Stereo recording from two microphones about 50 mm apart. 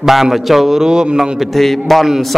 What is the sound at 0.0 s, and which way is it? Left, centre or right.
A man's voice, centre.